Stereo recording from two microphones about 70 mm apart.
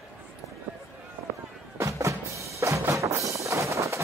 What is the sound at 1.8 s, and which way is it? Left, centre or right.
Music, right.